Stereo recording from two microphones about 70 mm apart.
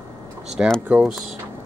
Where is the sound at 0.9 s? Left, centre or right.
Centre.